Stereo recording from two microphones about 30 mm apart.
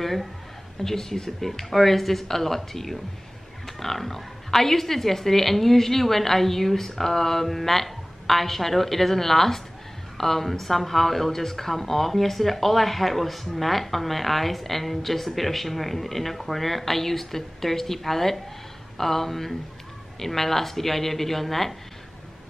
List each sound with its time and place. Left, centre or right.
0.0 s a sound: centre
0.8 s a woman's voice: centre
1.7 s a woman's voice: centre